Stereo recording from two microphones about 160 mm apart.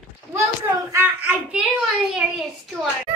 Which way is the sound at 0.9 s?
5° right (ahead or behind).